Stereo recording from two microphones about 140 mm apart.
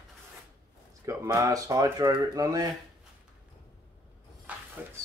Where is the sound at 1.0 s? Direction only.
20° right (ahead or behind).